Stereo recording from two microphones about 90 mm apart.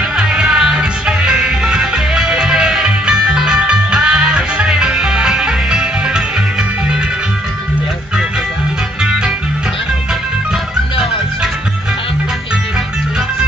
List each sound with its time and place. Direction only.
0.2 s music: 10° right (ahead or behind)
9.0 s music: 10° right (ahead or behind)